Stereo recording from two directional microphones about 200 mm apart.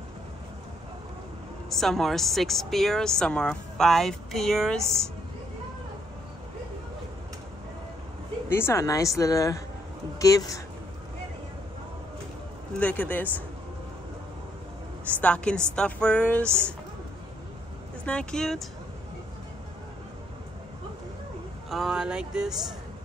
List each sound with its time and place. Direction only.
1.7 s a woman's voice: centre (ahead or behind)
8.5 s speech: 10° left (ahead or behind)
12.7 s speech: 5° left (ahead or behind)
15.1 s a woman's voice: 5° left (ahead or behind)
16.4 s a woman's voice: 10° right (ahead or behind)
18.0 s a woman's voice: 5° left (ahead or behind)
21.6 s a woman's voice: centre (ahead or behind)